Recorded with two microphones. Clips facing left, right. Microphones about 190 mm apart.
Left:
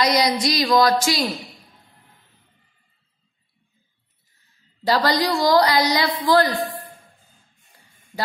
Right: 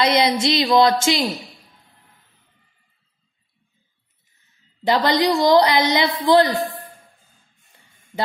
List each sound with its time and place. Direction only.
0.0 s a woman's voice: 25° right (ahead or behind)
4.8 s a woman's voice: 20° right (ahead or behind)